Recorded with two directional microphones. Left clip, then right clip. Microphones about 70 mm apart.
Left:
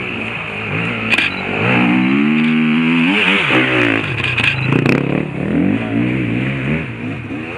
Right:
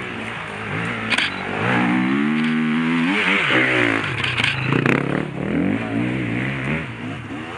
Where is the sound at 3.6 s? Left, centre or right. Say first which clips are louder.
Left 3 dB; centre.